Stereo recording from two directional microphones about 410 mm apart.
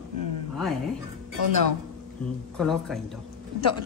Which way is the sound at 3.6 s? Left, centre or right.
Left.